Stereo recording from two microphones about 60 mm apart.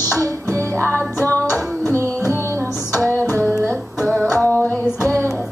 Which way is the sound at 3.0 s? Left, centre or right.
Right.